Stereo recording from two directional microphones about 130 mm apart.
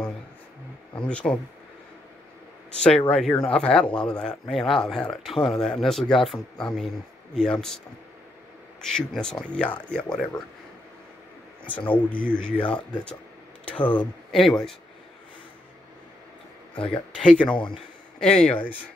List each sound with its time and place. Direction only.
0.9 s speech: 10° left (ahead or behind)
3.0 s speech: 5° left (ahead or behind)
8.8 s speech: 5° left (ahead or behind)
11.7 s speech: 10° left (ahead or behind)
12.3 s speech: 15° right (ahead or behind)
12.5 s speech: 10° left (ahead or behind)
16.7 s speech: 40° left (ahead or behind)
17.2 s speech: 5° left (ahead or behind)